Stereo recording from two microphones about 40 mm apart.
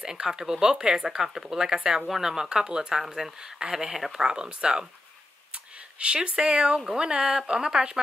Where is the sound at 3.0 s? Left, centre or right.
Centre.